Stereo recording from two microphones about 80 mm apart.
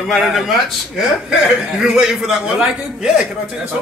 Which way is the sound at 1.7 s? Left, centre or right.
Centre.